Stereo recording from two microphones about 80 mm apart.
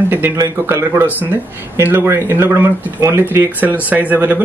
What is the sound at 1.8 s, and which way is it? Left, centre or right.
Speech, right.